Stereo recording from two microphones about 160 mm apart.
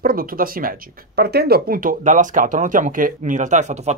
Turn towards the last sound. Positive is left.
turn(degrees=-50)  # may be behind; listen again after turning